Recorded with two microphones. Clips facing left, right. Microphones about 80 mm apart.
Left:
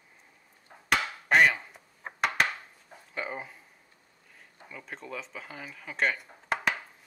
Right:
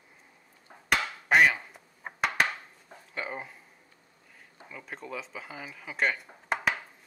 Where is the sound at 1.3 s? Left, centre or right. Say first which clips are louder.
Even; centre.